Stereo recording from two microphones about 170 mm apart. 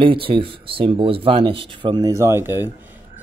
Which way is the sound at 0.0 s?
30° right (ahead or behind).